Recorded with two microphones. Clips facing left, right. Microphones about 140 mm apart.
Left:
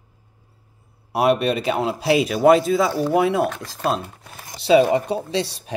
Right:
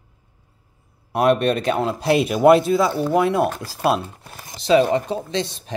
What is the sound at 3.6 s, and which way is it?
Speech, 30° right (ahead or behind).